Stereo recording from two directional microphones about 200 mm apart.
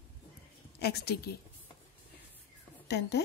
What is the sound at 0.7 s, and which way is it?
Speech, 55° left (ahead or behind).